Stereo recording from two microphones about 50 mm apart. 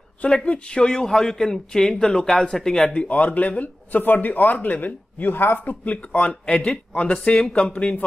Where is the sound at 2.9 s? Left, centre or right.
Left.